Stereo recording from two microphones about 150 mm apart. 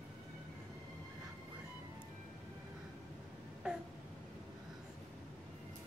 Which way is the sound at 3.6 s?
5° right (ahead or behind).